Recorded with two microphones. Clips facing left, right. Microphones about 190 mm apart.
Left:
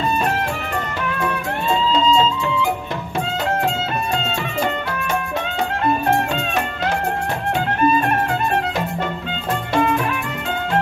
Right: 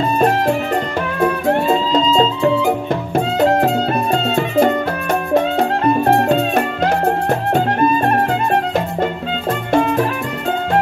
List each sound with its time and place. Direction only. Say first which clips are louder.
2.0 s music: right 3 dB; 35° right (ahead or behind)
5.3 s music: right 8 dB; 35° right (ahead or behind)
9.7 s music: right 4 dB; 40° right (ahead or behind)